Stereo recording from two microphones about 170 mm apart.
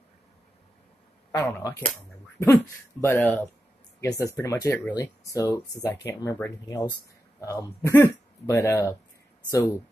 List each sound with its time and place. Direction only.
1.4 s speech: 20° left (ahead or behind)